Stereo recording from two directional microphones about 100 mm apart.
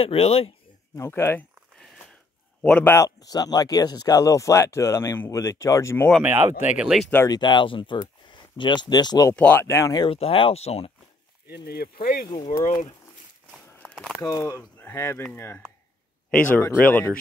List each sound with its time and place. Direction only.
0.0 s speech: 80° left
0.9 s speech: 25° left (ahead or behind)
2.6 s speech: 15° left (ahead or behind)
2.9 s speech: 35° left (ahead or behind)
6.2 s speech: 20° right (ahead or behind)
6.8 s speech: 5° right (ahead or behind)
7.2 s speech: 50° left (ahead or behind)
9.3 s speech: 15° left (ahead or behind)
9.6 s speech: 30° left (ahead or behind)
10.1 s speech: 75° left (ahead or behind)
12.5 s speech: 40° left (ahead or behind)
13.7 s a sound: 15° left (ahead or behind)
13.9 s speech: 5° left (ahead or behind)
14.2 s speech: 35° left (ahead or behind); by 17.0 s 15° left (ahead or behind)